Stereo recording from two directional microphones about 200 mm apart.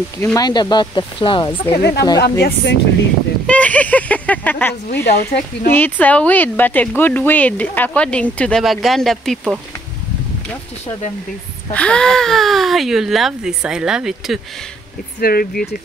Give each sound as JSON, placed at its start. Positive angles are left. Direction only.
{"t": 0.2, "sound": "speech", "side_deg": 15}
{"t": 1.7, "sound": "speech", "side_deg": 55}
{"t": 3.4, "sound": "speech", "side_deg": 5}
{"t": 11.7, "sound": "speech", "side_deg": 5}
{"t": 15.1, "sound": "speech", "side_deg": 50}